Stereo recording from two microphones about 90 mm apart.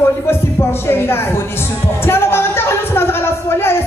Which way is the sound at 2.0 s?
25° left (ahead or behind).